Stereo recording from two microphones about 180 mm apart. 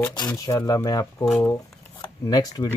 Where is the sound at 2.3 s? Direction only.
20° left (ahead or behind).